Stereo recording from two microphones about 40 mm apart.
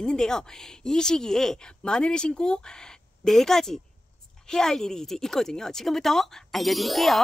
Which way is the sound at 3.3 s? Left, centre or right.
Centre.